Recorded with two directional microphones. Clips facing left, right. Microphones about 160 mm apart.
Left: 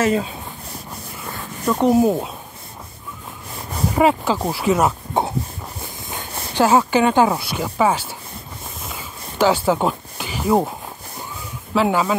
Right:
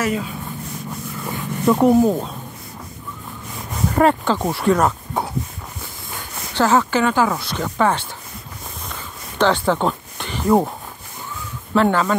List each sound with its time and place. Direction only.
0.0 s speech: 30° left (ahead or behind)
1.9 s speech: 10° left (ahead or behind)
3.9 s speech: 5° left (ahead or behind)
5.2 s a sound: 25° left (ahead or behind)
6.5 s speech: 15° left (ahead or behind)
8.8 s a sound: 5° left (ahead or behind)
11.7 s speech: 5° left (ahead or behind)